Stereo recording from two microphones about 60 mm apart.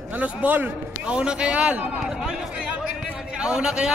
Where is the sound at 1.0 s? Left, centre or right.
Centre.